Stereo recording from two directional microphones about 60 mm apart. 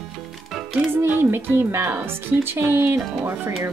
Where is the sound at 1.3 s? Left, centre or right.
Right.